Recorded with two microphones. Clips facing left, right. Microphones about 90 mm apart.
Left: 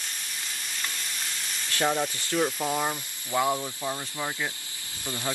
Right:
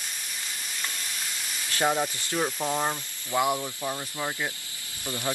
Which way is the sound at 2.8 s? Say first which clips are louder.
Right 1 dB; 15° right (ahead or behind).